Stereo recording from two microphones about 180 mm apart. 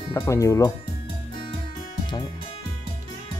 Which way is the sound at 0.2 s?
15° left (ahead or behind).